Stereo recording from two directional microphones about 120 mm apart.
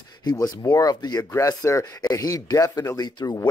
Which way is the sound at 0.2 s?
35° left (ahead or behind).